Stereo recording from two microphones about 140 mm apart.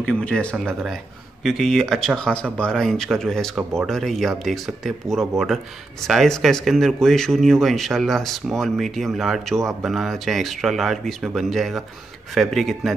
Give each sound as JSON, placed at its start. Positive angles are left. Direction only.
{"t": 0.0, "sound": "speech", "side_deg": 5}